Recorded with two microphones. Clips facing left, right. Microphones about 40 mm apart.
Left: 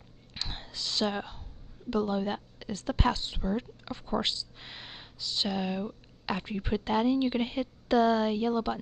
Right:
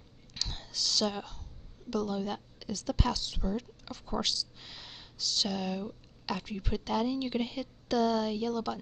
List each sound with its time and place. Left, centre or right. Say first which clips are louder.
0.3 s whispering: left 1 dB; left
1.9 s a woman's voice: left 3 dB; left